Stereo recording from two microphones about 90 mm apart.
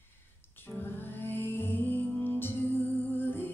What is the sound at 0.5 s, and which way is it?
Music, 25° left (ahead or behind).